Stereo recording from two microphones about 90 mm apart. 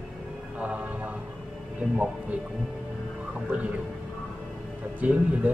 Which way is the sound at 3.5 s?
20° right (ahead or behind).